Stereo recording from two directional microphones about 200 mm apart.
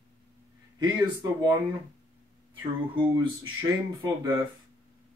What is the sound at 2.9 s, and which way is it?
Speech, 25° right (ahead or behind).